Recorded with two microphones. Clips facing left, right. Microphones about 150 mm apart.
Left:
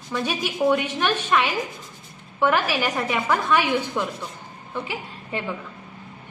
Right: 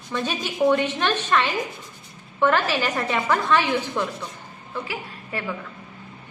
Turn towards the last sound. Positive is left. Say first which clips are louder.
# left 1 dB
turn(degrees=20)  # may be behind; listen again after turning